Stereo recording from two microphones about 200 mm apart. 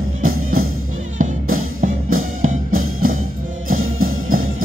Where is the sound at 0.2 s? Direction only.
90° right.